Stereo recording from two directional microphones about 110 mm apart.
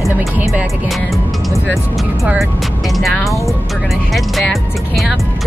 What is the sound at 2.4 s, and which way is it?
Speech, centre (ahead or behind).